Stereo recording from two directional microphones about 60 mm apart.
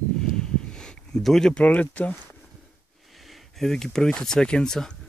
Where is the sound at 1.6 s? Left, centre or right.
Left.